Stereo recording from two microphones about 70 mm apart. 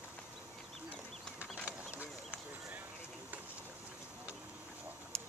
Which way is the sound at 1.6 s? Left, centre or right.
Right.